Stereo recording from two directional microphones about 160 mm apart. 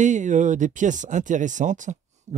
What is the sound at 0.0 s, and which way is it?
Speech, 50° right (ahead or behind).